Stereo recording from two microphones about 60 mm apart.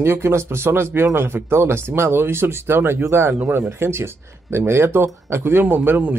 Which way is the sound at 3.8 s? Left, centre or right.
Right.